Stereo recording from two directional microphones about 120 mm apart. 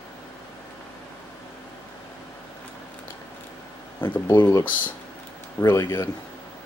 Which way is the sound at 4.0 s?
20° left (ahead or behind).